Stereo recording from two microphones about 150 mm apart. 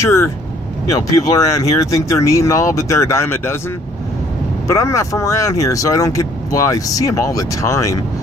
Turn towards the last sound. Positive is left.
turn(degrees=20)  # may be behind; listen again after turning